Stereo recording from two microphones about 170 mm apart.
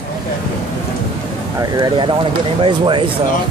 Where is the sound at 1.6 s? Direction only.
25° right (ahead or behind).